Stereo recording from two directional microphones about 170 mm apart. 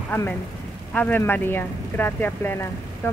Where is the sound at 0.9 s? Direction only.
10° left (ahead or behind).